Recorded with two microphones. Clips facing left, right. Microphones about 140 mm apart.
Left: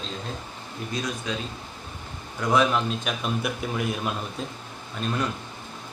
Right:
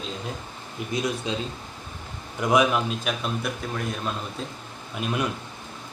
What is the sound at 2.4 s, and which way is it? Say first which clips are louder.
Speech: right 1 dB; 15° right (ahead or behind).